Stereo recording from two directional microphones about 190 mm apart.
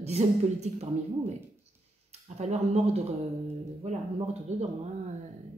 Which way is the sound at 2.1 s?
35° right (ahead or behind).